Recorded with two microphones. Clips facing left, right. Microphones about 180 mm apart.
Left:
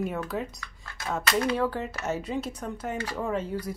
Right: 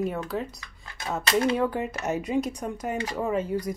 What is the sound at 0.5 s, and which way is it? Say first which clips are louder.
Dishes: even; 20° right (ahead or behind).